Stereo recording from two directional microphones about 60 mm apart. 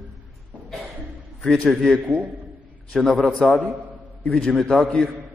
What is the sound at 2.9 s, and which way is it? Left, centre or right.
A man's voice, centre.